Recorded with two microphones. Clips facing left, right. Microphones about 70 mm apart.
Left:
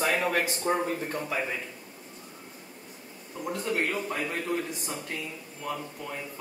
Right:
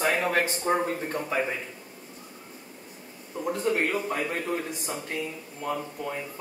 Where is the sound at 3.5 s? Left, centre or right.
Centre.